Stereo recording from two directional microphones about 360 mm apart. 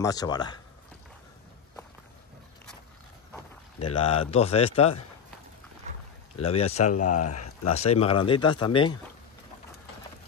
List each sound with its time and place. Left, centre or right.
0.0 s speech: centre
4.0 s speech: centre
6.3 s speech: centre
6.8 s speech: left
7.1 s speech: centre
7.3 s a sound: left
7.7 s speech: centre